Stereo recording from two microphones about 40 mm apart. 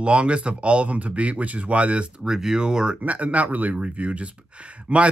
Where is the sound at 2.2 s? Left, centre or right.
Centre.